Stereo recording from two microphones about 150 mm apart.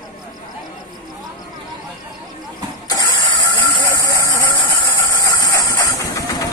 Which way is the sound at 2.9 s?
30° left (ahead or behind).